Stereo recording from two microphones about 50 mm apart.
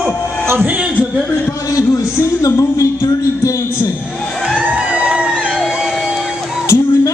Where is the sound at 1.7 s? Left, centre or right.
Left.